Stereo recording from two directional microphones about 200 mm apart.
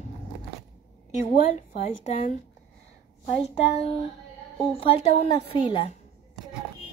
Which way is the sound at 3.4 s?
35° left (ahead or behind).